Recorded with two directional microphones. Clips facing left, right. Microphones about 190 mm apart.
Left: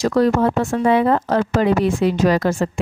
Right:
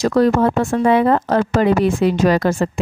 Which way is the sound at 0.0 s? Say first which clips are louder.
Right 2 dB; 55° right (ahead or behind).